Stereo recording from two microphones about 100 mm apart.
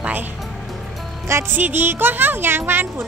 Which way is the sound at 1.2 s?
25° right (ahead or behind).